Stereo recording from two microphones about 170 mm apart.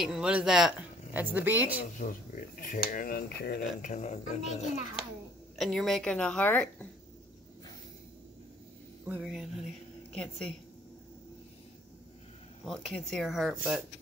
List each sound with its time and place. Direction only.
0.0 s speech: 5° right (ahead or behind)
2.0 s speech: 50° left (ahead or behind); by 3.9 s 70° left (ahead or behind)
3.9 s a woman's voice: 40° left (ahead or behind)
5.6 s a woman's voice: centre (ahead or behind)
9.0 s a woman's voice: 5° right (ahead or behind)
12.6 s a woman's voice: 5° left (ahead or behind)